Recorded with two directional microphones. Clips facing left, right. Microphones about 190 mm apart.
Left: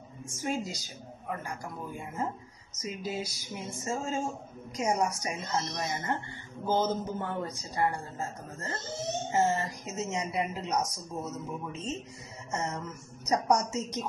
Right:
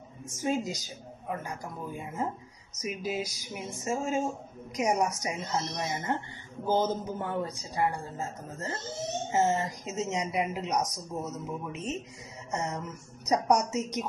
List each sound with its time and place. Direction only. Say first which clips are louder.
0.4 s speech: right 3 dB; 15° right (ahead or behind)